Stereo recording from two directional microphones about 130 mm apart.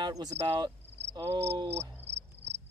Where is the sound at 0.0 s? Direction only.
35° right (ahead or behind).